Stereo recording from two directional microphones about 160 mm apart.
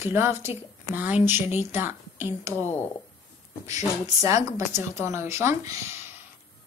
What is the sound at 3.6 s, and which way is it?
A woman's voice, 20° right (ahead or behind).